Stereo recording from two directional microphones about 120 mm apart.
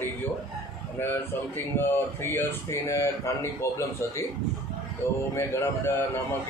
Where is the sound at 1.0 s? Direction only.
20° left (ahead or behind).